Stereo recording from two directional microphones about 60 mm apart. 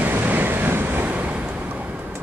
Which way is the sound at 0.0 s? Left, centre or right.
Right.